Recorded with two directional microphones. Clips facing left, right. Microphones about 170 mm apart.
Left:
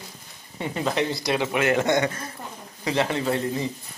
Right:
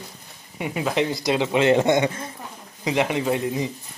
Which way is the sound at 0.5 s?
10° right (ahead or behind).